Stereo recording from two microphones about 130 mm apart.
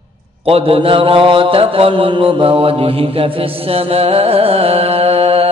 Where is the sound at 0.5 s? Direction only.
50° right (ahead or behind).